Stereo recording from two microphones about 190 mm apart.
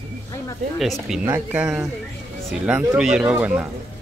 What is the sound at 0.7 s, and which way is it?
Speech, centre (ahead or behind).